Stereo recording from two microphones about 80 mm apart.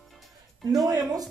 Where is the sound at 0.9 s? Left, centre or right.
Right.